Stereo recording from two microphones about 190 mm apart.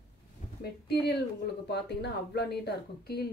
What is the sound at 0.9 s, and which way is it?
A woman's voice, 60° left (ahead or behind).